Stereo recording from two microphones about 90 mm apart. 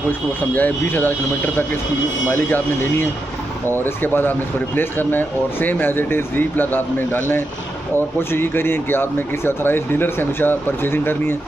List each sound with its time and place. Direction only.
0.6 s speech: 20° left (ahead or behind)